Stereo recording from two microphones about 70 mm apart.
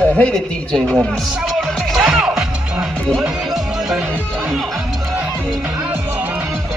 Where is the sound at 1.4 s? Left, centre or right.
Centre.